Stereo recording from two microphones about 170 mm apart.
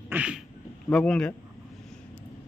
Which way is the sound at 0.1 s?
5° right (ahead or behind).